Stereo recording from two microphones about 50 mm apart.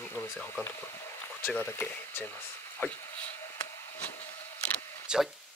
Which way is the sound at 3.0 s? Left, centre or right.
Left.